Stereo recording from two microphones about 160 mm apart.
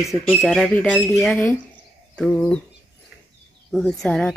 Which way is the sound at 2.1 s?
5° left (ahead or behind).